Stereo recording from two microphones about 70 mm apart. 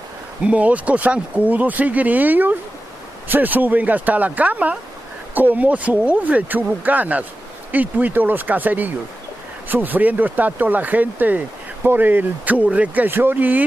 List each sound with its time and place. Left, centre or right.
0.4 s speech: centre